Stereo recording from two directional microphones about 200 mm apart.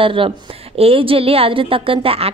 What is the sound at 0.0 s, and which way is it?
Speech, 25° right (ahead or behind).